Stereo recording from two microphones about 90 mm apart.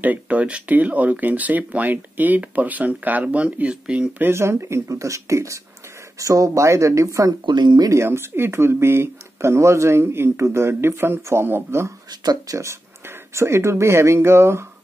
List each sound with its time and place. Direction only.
0.0 s speech: 15° right (ahead or behind)
4.2 s speech: 30° right (ahead or behind)
7.4 s speech: 55° right (ahead or behind)
7.9 s speech: 30° right (ahead or behind)
12.1 s speech: 50° right (ahead or behind)
12.5 s speech: 35° right (ahead or behind)